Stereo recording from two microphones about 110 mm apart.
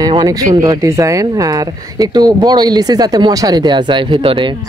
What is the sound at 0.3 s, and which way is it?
Speech, 30° right (ahead or behind).